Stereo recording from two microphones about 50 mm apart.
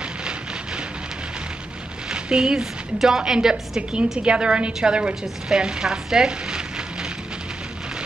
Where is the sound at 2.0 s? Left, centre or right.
Centre.